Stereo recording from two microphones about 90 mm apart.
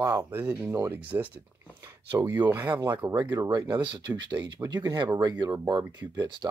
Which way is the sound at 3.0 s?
10° right (ahead or behind).